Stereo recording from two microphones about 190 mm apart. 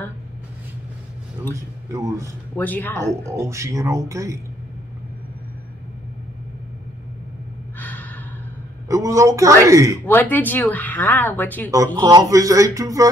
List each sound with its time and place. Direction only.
1.9 s speech: 15° right (ahead or behind)
2.5 s speech: 10° left (ahead or behind)
3.3 s speech: 15° right (ahead or behind)
7.8 s gasp: 10° left (ahead or behind)
8.8 s speech: 15° right (ahead or behind)
10.0 s speech: 10° left (ahead or behind)
11.7 s speech: 20° right (ahead or behind)